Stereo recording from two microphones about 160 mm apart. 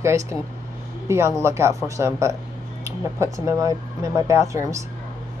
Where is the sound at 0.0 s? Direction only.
15° right (ahead or behind).